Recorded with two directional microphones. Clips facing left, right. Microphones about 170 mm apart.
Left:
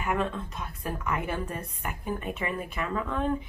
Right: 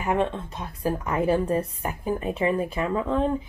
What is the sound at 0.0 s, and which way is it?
A woman's voice, 30° right (ahead or behind).